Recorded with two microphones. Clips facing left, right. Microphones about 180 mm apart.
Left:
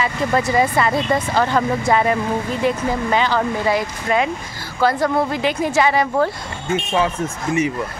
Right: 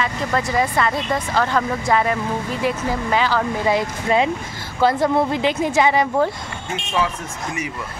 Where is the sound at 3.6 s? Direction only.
25° right (ahead or behind).